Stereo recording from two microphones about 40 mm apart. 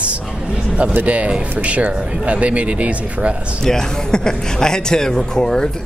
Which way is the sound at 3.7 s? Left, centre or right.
Centre.